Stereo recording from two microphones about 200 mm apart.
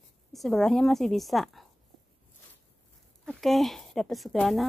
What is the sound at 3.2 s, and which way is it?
Speech, centre (ahead or behind).